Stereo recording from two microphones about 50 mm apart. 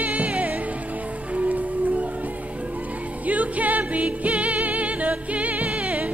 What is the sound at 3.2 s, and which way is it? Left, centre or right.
Music, right.